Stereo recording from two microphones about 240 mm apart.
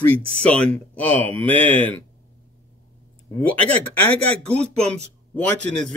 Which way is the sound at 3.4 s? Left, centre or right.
Centre.